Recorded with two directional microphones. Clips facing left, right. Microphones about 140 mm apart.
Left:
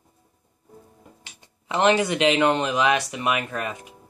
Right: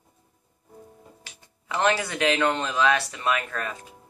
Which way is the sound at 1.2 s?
20° left (ahead or behind).